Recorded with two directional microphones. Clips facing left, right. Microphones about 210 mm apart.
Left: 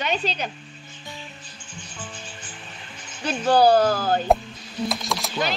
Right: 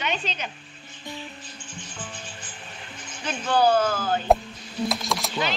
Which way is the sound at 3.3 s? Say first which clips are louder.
Left 4 dB; 35° left (ahead or behind).